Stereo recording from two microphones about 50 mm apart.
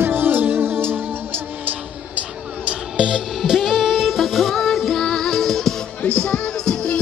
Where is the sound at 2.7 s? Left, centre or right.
Centre.